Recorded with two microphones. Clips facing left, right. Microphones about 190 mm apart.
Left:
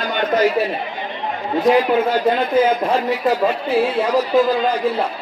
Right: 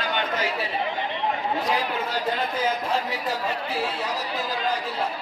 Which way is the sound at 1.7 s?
55° left (ahead or behind).